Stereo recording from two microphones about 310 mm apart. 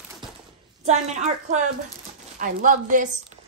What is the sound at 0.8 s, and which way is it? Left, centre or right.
A woman's voice, right.